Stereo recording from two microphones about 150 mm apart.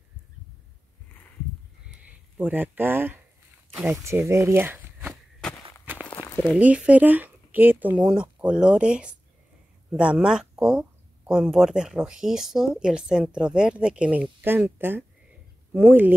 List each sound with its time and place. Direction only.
2.0 s speech: 10° right (ahead or behind)
6.4 s speech: 10° right (ahead or behind)